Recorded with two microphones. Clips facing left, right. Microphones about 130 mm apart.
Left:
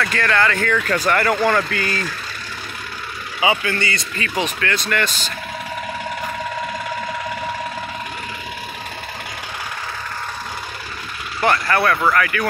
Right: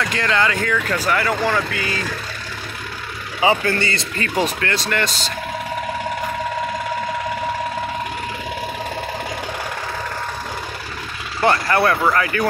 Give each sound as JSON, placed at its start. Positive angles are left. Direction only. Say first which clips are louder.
{"t": 0.0, "sound": "speech", "louder": "left 1 dB", "side_deg": -20}
{"t": 3.3, "sound": "speech", "louder": "right 2 dB", "side_deg": -35}
{"t": 11.4, "sound": "speech", "louder": "right 1 dB", "side_deg": -25}